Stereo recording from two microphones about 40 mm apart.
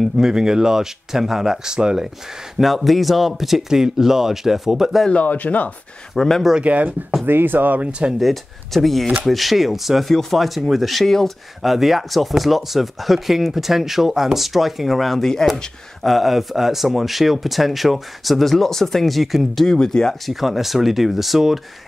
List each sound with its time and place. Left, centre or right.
0.2 s speech: centre
2.6 s speech: centre
5.1 s speech: left
6.1 s speech: centre
6.6 s speech: right
7.2 s speech: right
8.2 s speech: centre
16.0 s speech: centre
20.2 s speech: centre